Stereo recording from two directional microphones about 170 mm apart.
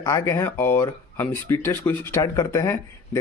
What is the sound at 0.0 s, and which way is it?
Speech, 15° left (ahead or behind).